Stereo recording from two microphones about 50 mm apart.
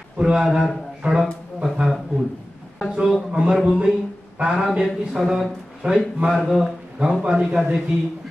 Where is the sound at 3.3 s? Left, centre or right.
Centre.